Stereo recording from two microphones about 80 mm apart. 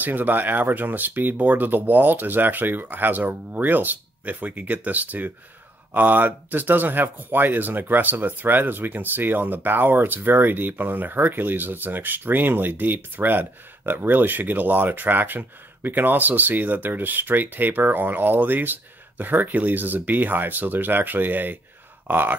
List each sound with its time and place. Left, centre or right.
0.0 s speech: right